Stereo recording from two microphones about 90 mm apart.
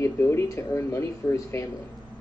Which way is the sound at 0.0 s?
30° left (ahead or behind).